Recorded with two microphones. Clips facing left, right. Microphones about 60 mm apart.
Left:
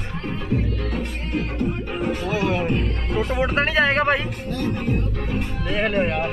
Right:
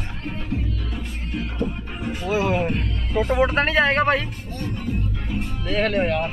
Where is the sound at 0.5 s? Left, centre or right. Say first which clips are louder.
Left 6 dB; left.